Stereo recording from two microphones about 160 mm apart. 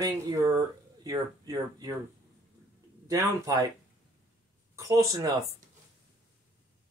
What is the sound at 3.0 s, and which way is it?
Speech, 20° right (ahead or behind).